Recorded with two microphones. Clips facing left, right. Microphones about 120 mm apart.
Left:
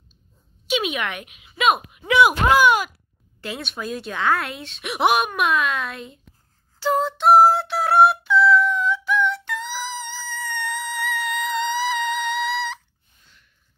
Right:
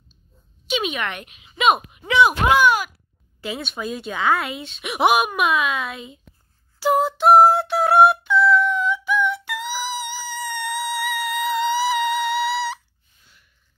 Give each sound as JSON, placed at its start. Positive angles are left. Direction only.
{"t": 0.7, "sound": "speech", "side_deg": 5}
{"t": 6.8, "sound": "music", "side_deg": -10}